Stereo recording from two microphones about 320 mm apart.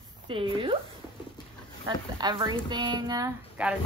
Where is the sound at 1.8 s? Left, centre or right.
Centre.